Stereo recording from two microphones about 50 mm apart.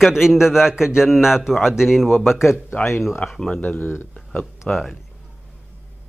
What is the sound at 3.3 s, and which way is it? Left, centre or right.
Speech, centre.